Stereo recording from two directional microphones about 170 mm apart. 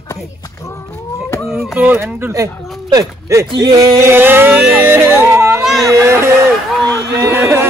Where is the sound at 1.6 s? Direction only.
5° right (ahead or behind).